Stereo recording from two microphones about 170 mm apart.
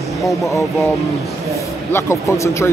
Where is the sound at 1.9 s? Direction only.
15° left (ahead or behind).